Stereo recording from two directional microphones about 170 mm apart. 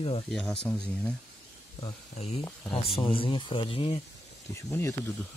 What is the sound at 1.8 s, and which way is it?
Speech, 25° left (ahead or behind).